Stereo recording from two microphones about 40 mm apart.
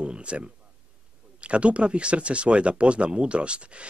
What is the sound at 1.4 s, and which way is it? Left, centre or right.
Speech, right.